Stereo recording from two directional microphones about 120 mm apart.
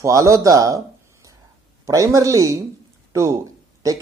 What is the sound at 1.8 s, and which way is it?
Speech, 25° right (ahead or behind).